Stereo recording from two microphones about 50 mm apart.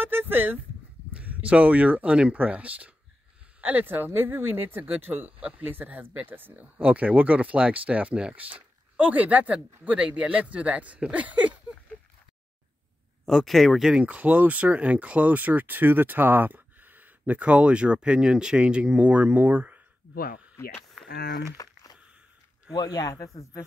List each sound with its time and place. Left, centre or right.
0.0 s speech: right
1.1 s speech: right
8.4 s speech: right
13.2 s speech: centre
13.9 s speech: right
17.4 s speech: right
20.6 s speech: left